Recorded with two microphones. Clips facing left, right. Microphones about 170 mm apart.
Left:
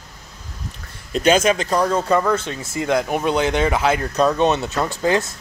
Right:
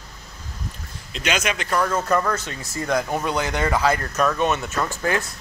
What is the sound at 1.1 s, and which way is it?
Speech, 40° left (ahead or behind).